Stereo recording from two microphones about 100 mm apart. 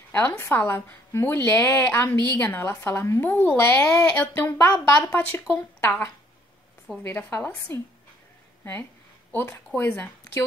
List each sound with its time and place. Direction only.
0.1 s a woman's voice: 25° left (ahead or behind)
9.3 s a woman's voice: 25° left (ahead or behind)